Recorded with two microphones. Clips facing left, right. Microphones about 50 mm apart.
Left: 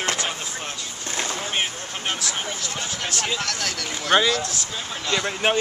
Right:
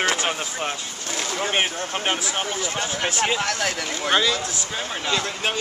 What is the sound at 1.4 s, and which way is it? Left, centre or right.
Speech, right.